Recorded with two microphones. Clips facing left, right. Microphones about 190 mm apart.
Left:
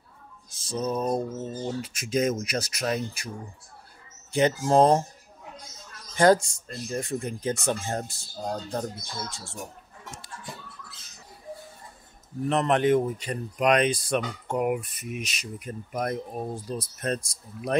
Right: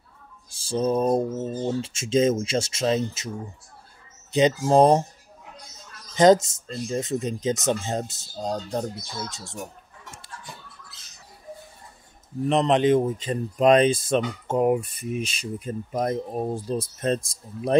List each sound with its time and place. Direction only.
0.5 s speech: 30° right (ahead or behind)
4.3 s speech: 15° right (ahead or behind)
6.1 s speech: 20° right (ahead or behind)
12.4 s speech: 20° right (ahead or behind)